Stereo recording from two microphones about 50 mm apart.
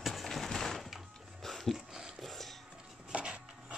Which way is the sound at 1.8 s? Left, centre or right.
Centre.